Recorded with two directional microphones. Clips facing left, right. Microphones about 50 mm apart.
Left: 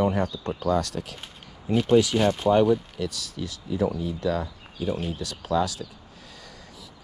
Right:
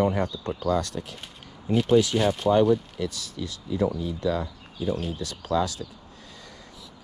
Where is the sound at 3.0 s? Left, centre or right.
Right.